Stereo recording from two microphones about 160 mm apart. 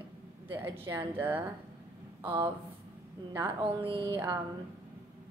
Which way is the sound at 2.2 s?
15° right (ahead or behind).